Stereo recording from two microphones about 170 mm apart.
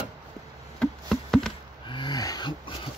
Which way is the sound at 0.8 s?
5° left (ahead or behind).